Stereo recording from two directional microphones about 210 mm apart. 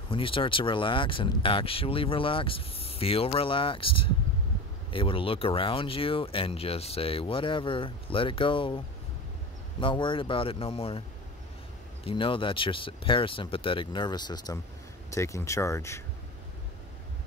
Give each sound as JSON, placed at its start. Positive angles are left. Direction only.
{"t": 0.1, "sound": "speech", "side_deg": 25}